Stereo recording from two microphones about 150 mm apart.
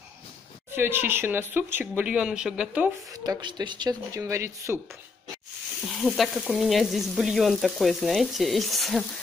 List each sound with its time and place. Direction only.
0.7 s speech: 15° right (ahead or behind)
3.1 s speech: 25° right (ahead or behind)
5.9 s frying: centre (ahead or behind)